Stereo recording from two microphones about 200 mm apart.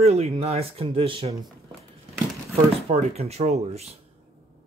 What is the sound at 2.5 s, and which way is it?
Speech, 30° right (ahead or behind).